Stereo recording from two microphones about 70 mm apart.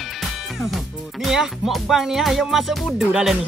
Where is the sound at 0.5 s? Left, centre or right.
Centre.